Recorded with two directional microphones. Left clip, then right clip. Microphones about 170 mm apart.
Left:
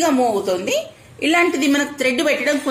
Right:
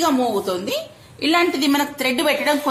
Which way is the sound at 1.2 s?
20° right (ahead or behind).